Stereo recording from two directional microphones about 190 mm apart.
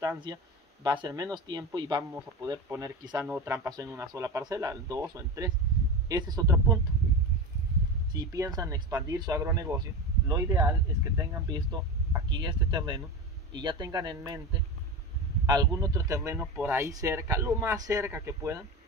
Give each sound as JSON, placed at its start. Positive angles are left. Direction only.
{"t": 0.0, "sound": "speech", "side_deg": -20}
{"t": 8.1, "sound": "speech", "side_deg": -20}
{"t": 15.4, "sound": "speech", "side_deg": -20}